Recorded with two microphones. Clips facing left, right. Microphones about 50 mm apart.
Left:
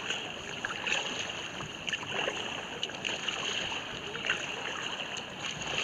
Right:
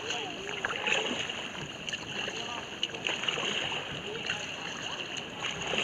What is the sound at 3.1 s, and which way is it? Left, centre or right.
Boat, right.